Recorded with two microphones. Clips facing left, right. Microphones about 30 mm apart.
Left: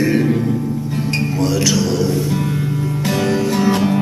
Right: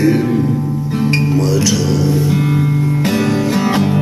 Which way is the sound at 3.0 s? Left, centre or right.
Right.